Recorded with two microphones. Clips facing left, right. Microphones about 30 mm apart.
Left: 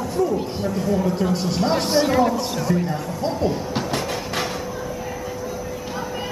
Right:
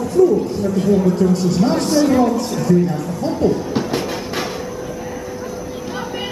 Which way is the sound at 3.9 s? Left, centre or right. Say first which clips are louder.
Right 3 dB; centre.